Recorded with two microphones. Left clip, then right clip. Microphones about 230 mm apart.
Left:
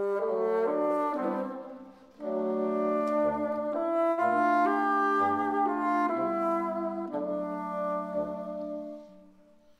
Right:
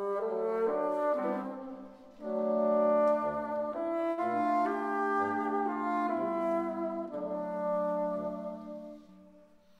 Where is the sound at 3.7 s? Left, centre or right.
Left.